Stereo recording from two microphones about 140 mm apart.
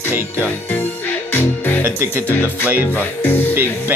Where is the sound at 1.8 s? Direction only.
15° right (ahead or behind).